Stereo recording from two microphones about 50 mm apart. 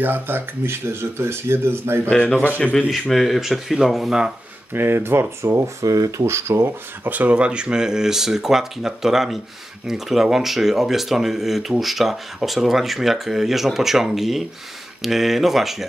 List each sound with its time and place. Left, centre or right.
0.0 s speech: right
2.0 s speech: left
2.9 s speech: centre
4.7 s speech: right
5.5 s speech: right
7.1 s speech: right; by 15.7 s centre